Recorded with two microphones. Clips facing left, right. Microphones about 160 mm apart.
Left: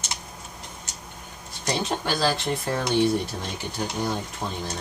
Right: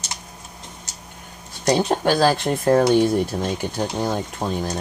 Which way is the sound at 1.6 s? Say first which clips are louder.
Right 8 dB; 55° right (ahead or behind).